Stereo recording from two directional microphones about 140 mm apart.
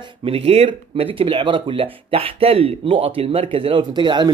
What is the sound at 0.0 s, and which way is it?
A man's voice, 40° right (ahead or behind).